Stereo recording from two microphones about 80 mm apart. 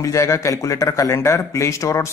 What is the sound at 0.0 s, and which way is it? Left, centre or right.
Speech, left.